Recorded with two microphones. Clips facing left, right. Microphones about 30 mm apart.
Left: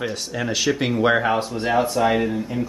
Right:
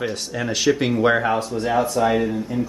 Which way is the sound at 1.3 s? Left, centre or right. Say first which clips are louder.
Even; left.